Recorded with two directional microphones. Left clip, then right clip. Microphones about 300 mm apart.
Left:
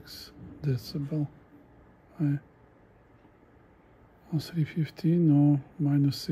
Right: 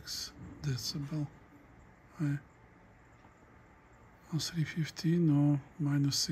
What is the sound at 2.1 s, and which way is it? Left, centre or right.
Speech, centre.